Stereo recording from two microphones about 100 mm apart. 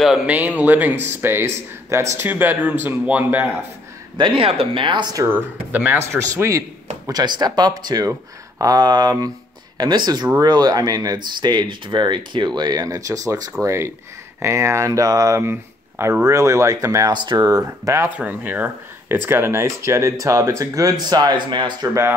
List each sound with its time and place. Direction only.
0.3 s speech: 15° right (ahead or behind)
4.2 s speech: 65° right (ahead or behind)
5.3 s speech: 20° right (ahead or behind)
7.1 s speech: 45° right (ahead or behind)
15.4 s speech: 25° right (ahead or behind)
17.1 s speech: 50° right (ahead or behind); by 18.1 s 30° right (ahead or behind)
18.1 s speech: 15° right (ahead or behind); by 21.7 s 50° right (ahead or behind)